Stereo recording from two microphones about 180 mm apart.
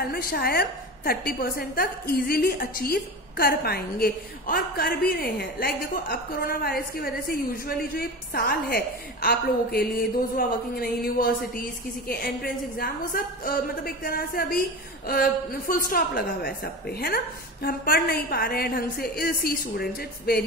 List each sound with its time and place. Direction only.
0.0 s a woman's voice: 55° left (ahead or behind)
12.7 s a woman's voice: 55° left (ahead or behind)